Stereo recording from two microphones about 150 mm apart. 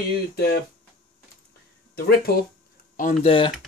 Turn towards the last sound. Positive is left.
turn(degrees=40)  # may be behind; listen again after turning